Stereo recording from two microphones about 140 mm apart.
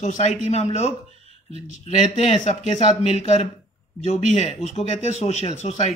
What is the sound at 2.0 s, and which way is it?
Speech, 55° left (ahead or behind).